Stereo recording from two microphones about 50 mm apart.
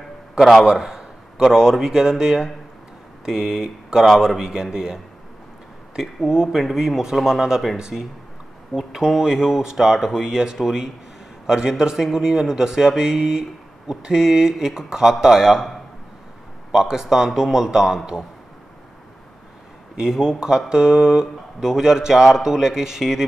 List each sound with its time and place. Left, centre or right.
0.4 s a man's voice: centre
0.7 s a man's voice: centre
4.0 s speech: centre
6.2 s speech: centre
16.7 s speech: centre
20.0 s speech: centre